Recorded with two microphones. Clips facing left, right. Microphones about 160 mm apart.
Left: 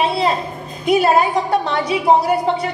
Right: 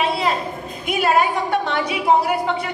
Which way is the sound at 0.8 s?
35° left (ahead or behind).